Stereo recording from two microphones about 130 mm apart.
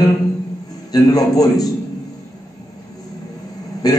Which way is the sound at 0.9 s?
30° left (ahead or behind).